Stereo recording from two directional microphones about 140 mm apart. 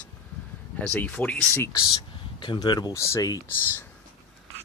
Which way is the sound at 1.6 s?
25° left (ahead or behind).